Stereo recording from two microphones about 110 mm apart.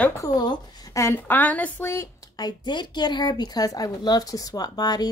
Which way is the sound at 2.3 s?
40° left (ahead or behind).